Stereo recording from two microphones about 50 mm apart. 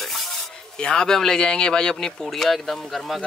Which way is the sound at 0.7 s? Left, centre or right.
Centre.